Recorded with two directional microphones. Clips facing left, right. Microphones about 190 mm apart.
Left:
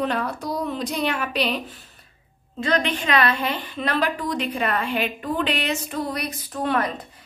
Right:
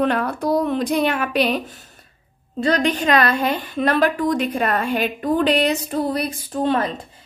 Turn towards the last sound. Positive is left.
turn(degrees=-25)  # may be behind; listen again after turning